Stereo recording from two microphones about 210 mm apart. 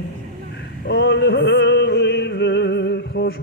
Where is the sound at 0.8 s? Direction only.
55° left (ahead or behind).